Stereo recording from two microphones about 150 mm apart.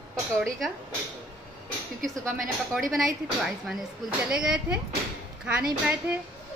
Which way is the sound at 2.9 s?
Centre (ahead or behind).